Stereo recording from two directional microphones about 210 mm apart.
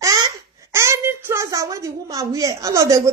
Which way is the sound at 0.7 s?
15° right (ahead or behind).